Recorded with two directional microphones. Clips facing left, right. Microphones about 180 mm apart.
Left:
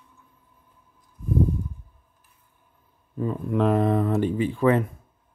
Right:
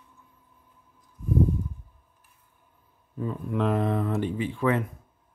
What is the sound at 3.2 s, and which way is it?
Speech, 45° left (ahead or behind).